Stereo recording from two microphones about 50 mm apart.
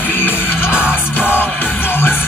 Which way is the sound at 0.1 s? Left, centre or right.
Left.